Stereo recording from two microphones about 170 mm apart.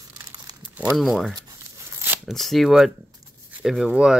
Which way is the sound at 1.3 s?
20° right (ahead or behind).